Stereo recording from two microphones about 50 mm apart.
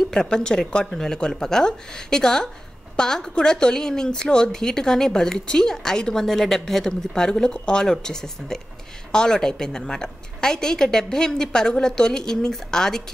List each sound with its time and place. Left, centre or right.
0.1 s speech: centre